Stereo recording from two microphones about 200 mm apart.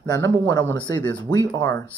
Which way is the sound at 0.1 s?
20° left (ahead or behind).